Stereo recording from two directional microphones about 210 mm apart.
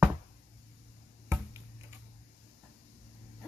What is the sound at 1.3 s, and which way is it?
Finger snapping, 10° right (ahead or behind).